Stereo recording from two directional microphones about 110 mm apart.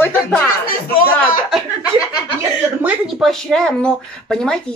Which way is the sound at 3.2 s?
5° left (ahead or behind).